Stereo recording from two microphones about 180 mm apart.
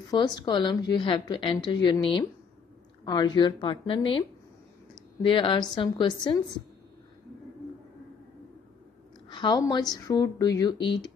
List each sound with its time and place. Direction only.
0.1 s a woman's voice: 25° left (ahead or behind)
5.2 s a woman's voice: 25° left (ahead or behind)
9.3 s a woman's voice: 25° left (ahead or behind)